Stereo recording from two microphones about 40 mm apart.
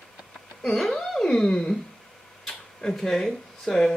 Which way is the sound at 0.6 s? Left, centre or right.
Centre.